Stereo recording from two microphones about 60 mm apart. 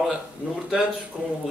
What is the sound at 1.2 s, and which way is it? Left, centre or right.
Speech, centre.